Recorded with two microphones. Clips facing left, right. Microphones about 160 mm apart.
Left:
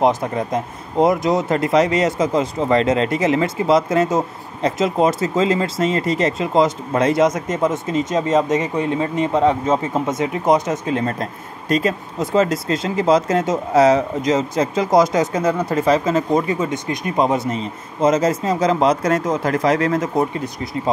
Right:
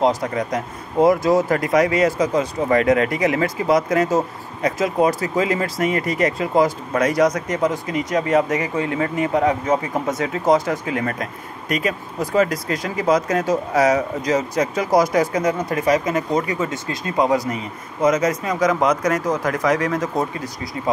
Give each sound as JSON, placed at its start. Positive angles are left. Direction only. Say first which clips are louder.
{"t": 0.0, "sound": "speech", "louder": "left 1 dB", "side_deg": 25}